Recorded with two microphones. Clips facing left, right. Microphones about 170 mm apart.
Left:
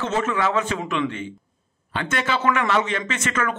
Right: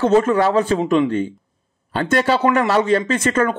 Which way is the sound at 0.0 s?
35° right (ahead or behind).